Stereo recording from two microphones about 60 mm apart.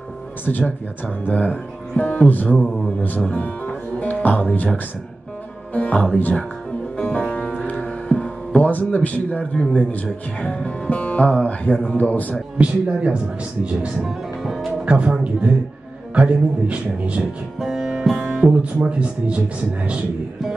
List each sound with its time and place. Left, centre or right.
0.5 s speech: left
3.3 s music: left
5.7 s speech: left
7.0 s music: centre
8.7 s speech: left
9.4 s a man's voice: centre
12.5 s speech: centre
14.0 s music: centre
14.9 s speech: centre
17.6 s music: centre
18.5 s speech: right